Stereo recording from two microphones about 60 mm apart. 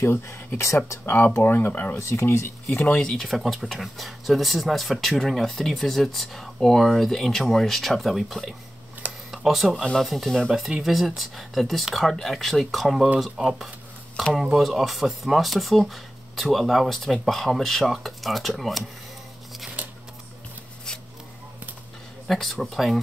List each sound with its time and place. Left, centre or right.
0.0 s speech: left
1.0 s speech: left
2.0 s speech: left
2.9 s speech: centre
3.3 s speech: centre
22.3 s speech: centre